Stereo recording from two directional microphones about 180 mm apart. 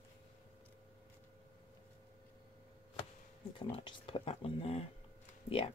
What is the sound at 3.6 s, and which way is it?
Speech, 30° left (ahead or behind).